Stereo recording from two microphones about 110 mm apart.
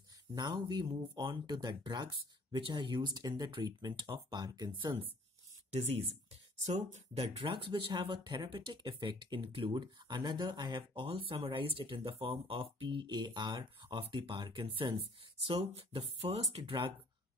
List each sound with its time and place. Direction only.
0.3 s speech: 40° right (ahead or behind)
6.6 s speech: 90° right; by 16.0 s 55° right (ahead or behind)
16.2 s speech: 70° right (ahead or behind)